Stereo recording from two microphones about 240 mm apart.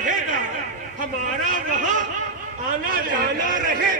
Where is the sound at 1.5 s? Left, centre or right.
Right.